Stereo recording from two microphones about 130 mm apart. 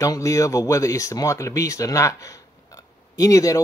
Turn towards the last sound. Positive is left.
turn(degrees=25)  # may be behind; listen again after turning